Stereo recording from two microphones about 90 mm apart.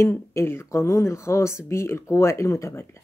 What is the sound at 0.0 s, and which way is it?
Speech, 30° left (ahead or behind).